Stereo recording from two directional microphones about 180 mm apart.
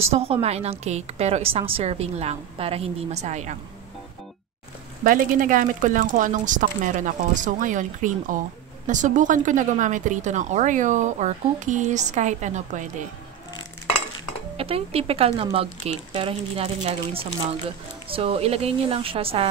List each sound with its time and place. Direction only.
0.2 s a woman's voice: 35° right (ahead or behind)
5.0 s speech: 50° right (ahead or behind)
14.6 s a woman's voice: 35° right (ahead or behind)